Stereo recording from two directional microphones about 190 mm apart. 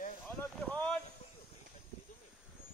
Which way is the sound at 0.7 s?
5° left (ahead or behind).